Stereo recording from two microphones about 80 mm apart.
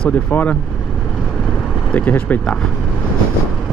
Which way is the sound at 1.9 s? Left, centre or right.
Centre.